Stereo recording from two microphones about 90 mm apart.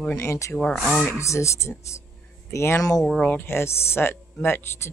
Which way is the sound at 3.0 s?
5° left (ahead or behind).